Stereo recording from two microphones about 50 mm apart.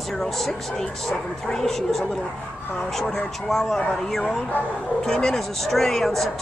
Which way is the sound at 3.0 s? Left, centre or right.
Centre.